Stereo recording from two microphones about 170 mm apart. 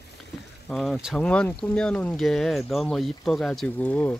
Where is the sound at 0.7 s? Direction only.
Centre (ahead or behind).